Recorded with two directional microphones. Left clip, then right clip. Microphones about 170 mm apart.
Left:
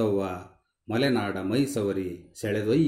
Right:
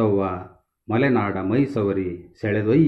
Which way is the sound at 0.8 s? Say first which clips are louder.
Right 5 dB; 15° left (ahead or behind).